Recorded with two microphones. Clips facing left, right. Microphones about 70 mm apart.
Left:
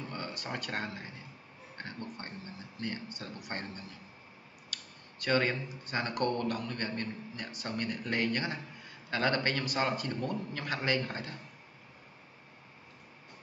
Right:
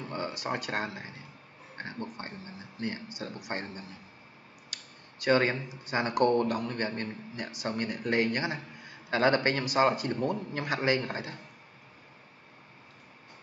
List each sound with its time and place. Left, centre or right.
0.0 s a sound: centre
0.5 s a man's voice: centre
5.2 s a man's voice: centre